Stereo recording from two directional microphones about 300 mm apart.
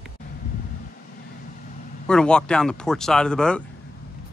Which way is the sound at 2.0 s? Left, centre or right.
Centre.